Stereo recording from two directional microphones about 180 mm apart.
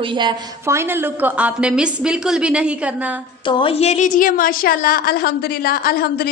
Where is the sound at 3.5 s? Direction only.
30° left (ahead or behind).